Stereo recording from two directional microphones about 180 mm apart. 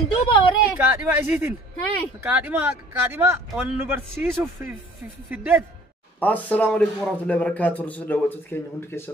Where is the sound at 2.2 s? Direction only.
10° right (ahead or behind).